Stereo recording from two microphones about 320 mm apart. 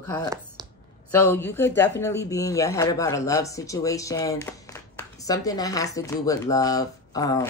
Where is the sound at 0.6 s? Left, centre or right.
Centre.